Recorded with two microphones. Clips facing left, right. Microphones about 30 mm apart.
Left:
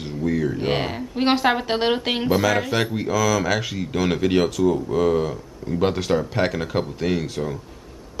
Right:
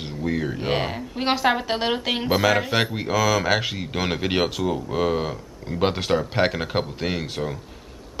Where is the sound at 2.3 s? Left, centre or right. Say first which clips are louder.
Even; centre.